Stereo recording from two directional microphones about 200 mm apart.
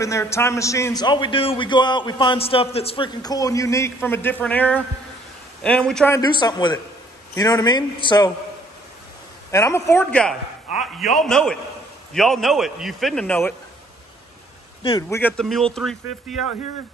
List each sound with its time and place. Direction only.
0.0 s a man's voice: 15° left (ahead or behind)
6.1 s a man's voice: 20° left (ahead or behind)
9.5 s a man's voice: 15° left (ahead or behind)
14.8 s a man's voice: 25° left (ahead or behind)
15.0 s a man's voice: 10° left (ahead or behind)